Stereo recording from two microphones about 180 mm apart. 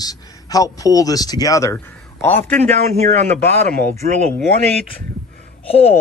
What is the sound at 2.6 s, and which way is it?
A man's voice, 40° right (ahead or behind).